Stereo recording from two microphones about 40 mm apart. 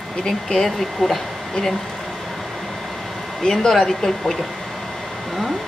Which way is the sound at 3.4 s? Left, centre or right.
Centre.